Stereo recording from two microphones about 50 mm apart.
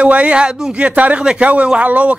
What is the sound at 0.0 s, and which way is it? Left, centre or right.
Speech, right.